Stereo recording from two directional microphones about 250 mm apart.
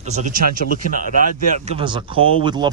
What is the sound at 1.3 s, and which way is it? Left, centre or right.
Speech, right.